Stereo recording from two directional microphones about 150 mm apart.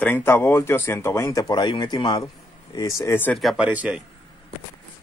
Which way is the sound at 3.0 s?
15° left (ahead or behind).